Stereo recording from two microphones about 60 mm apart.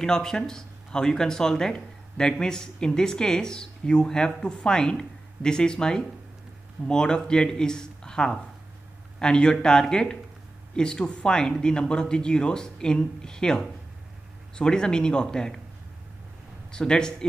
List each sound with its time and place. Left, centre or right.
0.0 s speech: centre
16.7 s speech: centre